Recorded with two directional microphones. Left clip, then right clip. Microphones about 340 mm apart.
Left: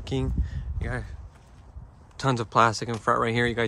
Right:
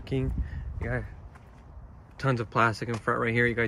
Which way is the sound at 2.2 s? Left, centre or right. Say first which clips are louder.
Left 4 dB; centre.